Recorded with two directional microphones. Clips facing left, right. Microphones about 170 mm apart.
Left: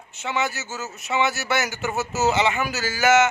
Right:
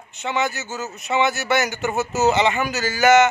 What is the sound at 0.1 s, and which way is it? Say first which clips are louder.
A man's voice: right 2 dB; 5° left (ahead or behind).